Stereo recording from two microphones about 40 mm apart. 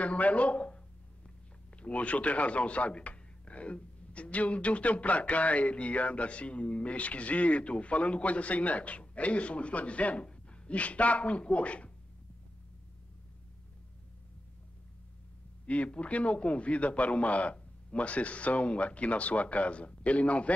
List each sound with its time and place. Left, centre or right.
0.0 s speech: left
1.8 s speech: left
10.2 s a sound: left
10.7 s speech: left
15.6 s speech: left